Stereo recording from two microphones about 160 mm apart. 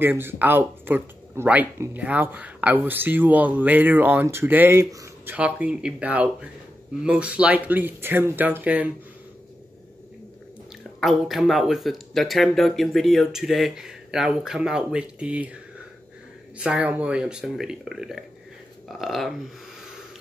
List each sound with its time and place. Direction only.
0.0 s speech: 15° right (ahead or behind)
11.0 s speech: centre (ahead or behind)
16.5 s speech: 5° right (ahead or behind)